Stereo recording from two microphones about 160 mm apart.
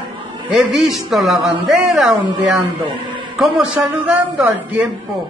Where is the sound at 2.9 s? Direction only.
30° right (ahead or behind).